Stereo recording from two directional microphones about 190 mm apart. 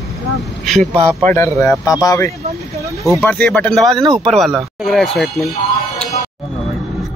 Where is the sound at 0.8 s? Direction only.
35° right (ahead or behind).